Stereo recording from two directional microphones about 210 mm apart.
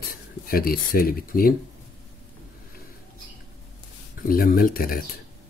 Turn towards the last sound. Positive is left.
turn(degrees=45)  # may be behind; listen again after turning